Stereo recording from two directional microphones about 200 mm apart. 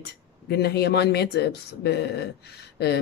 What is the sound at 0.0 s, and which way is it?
A woman's voice, 55° left (ahead or behind).